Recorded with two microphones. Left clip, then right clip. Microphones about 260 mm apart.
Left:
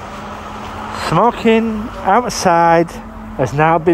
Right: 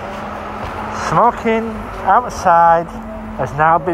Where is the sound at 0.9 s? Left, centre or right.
Left.